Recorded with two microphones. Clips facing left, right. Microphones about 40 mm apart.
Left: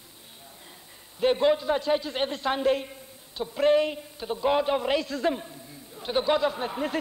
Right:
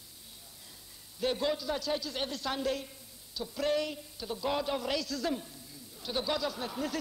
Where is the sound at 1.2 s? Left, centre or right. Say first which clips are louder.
Left 9 dB; left.